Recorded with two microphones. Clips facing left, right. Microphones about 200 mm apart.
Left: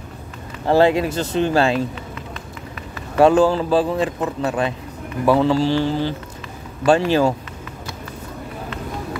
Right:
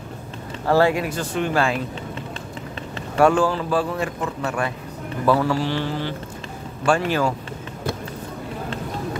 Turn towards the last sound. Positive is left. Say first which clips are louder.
# left 5 dB
turn(degrees=25)  # may be behind; listen again after turning